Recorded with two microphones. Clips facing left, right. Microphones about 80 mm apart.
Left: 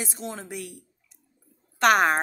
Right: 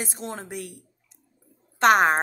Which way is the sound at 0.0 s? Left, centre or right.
Right.